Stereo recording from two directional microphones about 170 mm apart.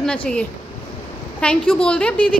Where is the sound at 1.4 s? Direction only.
5° left (ahead or behind).